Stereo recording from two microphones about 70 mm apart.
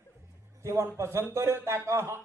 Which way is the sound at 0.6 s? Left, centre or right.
Right.